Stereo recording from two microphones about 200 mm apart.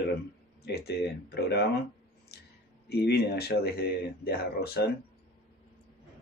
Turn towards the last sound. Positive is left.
turn(degrees=50)  # may be behind; listen again after turning